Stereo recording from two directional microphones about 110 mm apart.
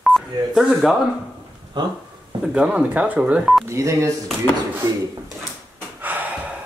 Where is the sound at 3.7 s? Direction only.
25° right (ahead or behind).